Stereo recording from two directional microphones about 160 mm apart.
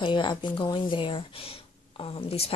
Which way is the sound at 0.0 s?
30° left (ahead or behind).